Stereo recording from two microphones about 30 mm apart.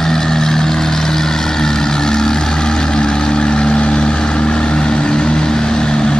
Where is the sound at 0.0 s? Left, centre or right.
Centre.